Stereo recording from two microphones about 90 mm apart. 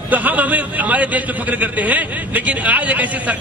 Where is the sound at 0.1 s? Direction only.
20° right (ahead or behind).